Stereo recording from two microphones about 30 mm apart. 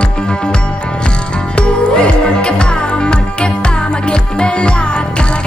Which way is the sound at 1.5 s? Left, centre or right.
Left.